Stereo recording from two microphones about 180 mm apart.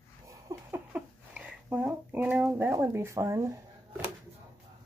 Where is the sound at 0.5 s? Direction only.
15° right (ahead or behind).